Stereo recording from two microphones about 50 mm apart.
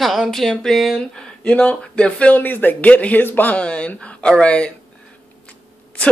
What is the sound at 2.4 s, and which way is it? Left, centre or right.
Speech, left.